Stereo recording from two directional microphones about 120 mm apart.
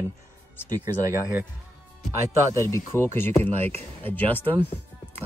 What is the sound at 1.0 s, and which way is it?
Speech, 20° right (ahead or behind).